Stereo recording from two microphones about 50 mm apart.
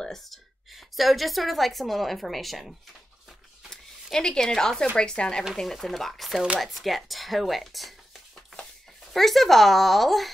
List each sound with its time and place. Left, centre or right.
0.0 s speech: centre
3.7 s speech: centre
5.6 s speech: centre